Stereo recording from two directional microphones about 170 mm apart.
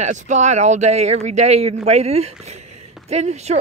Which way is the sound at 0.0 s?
45° right (ahead or behind).